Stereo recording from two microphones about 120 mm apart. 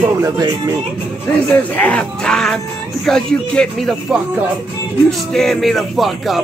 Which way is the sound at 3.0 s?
5° left (ahead or behind).